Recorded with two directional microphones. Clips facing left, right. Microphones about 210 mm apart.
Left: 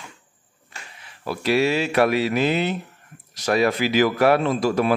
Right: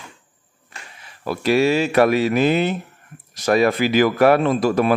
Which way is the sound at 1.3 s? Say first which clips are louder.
Right 3 dB; 45° right (ahead or behind).